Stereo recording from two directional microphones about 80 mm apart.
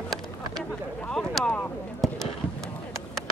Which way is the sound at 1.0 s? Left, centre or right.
Centre.